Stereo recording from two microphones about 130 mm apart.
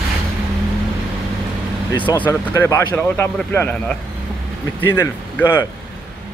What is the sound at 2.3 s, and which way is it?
Speech, 20° left (ahead or behind).